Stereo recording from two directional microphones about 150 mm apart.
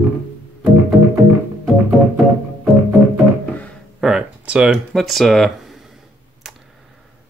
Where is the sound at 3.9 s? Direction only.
5° right (ahead or behind).